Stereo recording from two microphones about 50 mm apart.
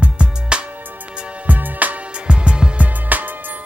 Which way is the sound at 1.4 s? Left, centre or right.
Right.